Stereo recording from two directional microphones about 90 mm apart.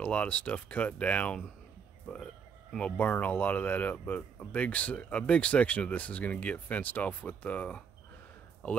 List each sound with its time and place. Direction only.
0.0 s speech: 15° left (ahead or behind)
2.7 s speech: 15° left (ahead or behind)